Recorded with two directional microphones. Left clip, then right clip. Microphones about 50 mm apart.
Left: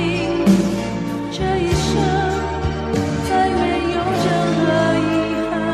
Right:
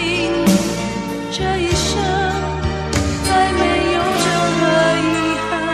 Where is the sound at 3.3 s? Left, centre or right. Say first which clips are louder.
Right 2 dB; left.